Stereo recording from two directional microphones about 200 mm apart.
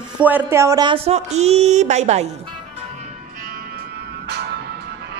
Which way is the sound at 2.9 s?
45° right (ahead or behind).